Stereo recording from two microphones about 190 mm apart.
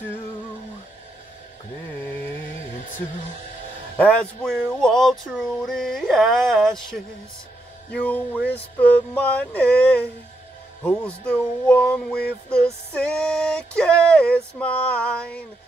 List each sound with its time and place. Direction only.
4.0 s music: 5° left (ahead or behind)
7.9 s a sound: 10° left (ahead or behind)
10.8 s music: 5° left (ahead or behind)